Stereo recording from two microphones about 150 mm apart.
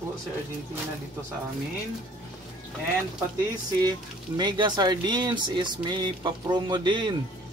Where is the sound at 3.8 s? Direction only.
30° right (ahead or behind).